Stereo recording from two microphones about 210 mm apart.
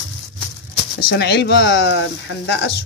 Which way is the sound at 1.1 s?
50° left (ahead or behind).